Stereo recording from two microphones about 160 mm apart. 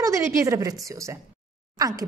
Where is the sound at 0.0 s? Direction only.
20° right (ahead or behind).